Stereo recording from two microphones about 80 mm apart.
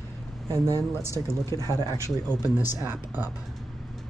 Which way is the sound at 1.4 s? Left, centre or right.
Left.